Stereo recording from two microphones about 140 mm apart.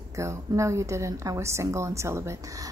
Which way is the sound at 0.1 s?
20° right (ahead or behind).